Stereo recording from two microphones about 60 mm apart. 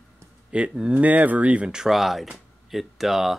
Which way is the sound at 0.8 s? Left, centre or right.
Centre.